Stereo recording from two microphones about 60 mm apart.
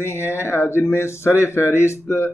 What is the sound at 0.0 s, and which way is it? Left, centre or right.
Speech, left.